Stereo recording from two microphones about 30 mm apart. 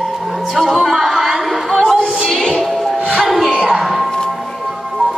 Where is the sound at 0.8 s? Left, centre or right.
Centre.